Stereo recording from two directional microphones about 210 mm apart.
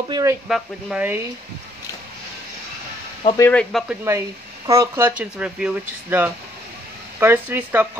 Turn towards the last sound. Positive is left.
turn(degrees=-10)  # may be behind; listen again after turning